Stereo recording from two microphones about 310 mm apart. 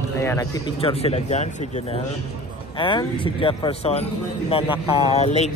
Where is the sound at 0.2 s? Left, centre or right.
Centre.